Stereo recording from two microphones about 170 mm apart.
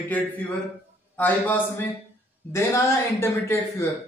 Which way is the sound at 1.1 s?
10° left (ahead or behind).